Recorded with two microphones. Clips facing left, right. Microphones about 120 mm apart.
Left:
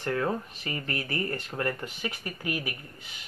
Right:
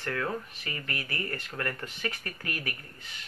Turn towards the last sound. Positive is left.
turn(degrees=15)  # may be behind; listen again after turning